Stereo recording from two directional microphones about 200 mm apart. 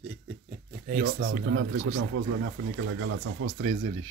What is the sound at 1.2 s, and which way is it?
Speech, 70° right (ahead or behind).